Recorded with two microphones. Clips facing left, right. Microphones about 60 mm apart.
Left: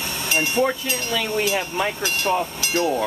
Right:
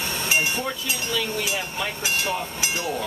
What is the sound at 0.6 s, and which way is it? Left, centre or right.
Speech, left.